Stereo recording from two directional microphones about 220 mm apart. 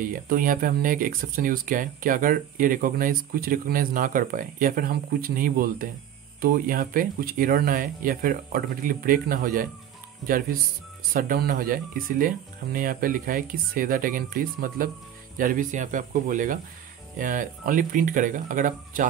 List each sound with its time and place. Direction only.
0.0 s speech: 40° right (ahead or behind)